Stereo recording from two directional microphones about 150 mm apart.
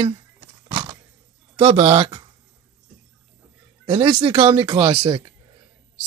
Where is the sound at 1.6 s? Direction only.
40° right (ahead or behind).